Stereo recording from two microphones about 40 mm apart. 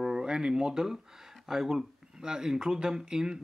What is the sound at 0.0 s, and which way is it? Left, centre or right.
Speech, centre.